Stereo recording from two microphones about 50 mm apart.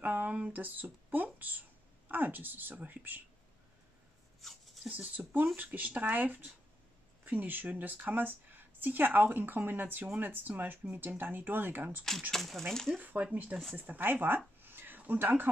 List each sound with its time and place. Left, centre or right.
0.0 s speech: right
4.4 s speech: centre
4.8 s speech: right
12.3 s speech: centre
12.9 s speech: right